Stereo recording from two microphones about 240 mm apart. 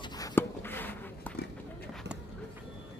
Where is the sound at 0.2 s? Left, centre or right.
Centre.